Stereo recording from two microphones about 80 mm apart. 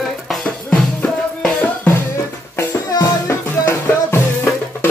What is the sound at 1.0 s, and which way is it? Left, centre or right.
Music, centre.